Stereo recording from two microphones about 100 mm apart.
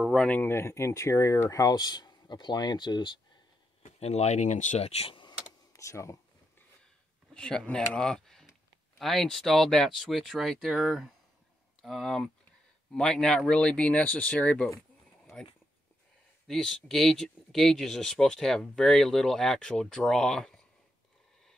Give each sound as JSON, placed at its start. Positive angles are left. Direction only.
{"t": 0.1, "sound": "speech", "side_deg": 10}
{"t": 0.4, "sound": "speech", "side_deg": 25}
{"t": 3.8, "sound": "speech", "side_deg": 90}
{"t": 5.7, "sound": "speech", "side_deg": 30}
{"t": 7.3, "sound": "speech", "side_deg": 10}